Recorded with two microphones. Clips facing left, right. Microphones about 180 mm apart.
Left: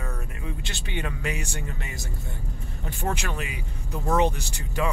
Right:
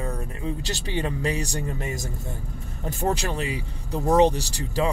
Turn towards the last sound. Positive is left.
turn(degrees=-35)  # may be behind; listen again after turning